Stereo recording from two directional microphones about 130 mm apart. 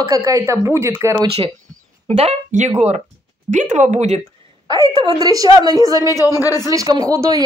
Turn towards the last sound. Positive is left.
turn(degrees=-25)  # may be behind; listen again after turning